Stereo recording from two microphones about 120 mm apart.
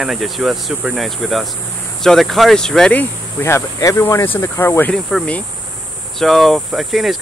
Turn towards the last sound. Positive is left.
turn(degrees=0)  # may be behind; listen again after turning